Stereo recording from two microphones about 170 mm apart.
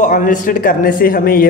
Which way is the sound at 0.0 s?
50° left (ahead or behind).